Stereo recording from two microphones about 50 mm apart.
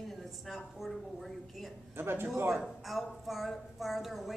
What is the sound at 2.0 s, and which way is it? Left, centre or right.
Speech, right.